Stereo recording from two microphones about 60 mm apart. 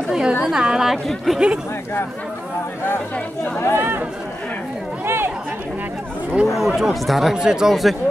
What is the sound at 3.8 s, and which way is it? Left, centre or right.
Speech, right.